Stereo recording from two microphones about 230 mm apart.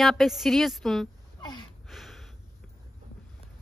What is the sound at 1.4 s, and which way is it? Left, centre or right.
Gasp, centre.